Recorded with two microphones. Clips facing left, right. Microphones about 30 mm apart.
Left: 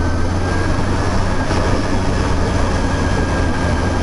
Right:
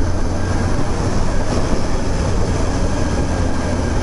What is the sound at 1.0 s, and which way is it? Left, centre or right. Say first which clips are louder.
Vehicle: left 2 dB; left.